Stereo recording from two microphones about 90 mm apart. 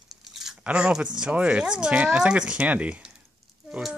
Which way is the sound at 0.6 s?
10° right (ahead or behind).